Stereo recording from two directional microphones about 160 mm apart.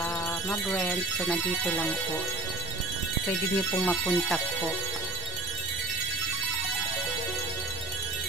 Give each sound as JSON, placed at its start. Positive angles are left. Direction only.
{"t": 0.5, "sound": "speech", "side_deg": 20}
{"t": 0.8, "sound": "speech", "side_deg": 5}
{"t": 3.3, "sound": "speech", "side_deg": 15}